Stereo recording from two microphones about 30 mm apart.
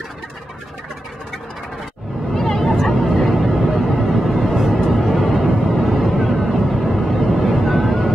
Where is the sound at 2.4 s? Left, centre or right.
Centre.